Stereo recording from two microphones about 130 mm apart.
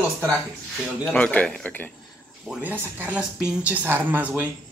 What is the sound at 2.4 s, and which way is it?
Speech, 15° right (ahead or behind).